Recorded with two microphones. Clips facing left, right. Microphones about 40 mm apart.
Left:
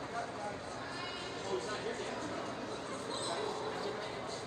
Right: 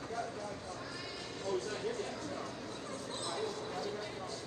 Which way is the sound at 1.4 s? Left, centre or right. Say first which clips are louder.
Right 2 dB; left.